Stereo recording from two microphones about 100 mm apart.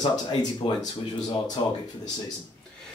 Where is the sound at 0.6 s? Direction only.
65° left (ahead or behind).